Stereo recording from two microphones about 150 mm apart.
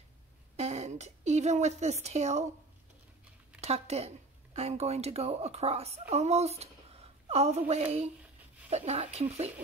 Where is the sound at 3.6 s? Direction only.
45° right (ahead or behind).